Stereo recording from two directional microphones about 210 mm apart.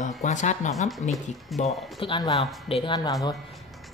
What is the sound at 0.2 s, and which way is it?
Speech, 35° left (ahead or behind).